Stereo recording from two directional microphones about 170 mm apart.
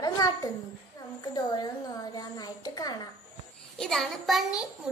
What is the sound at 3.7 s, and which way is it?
Child singing, centre (ahead or behind).